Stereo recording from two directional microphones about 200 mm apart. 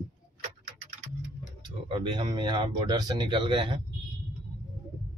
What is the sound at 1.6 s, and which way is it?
Speech, 25° right (ahead or behind).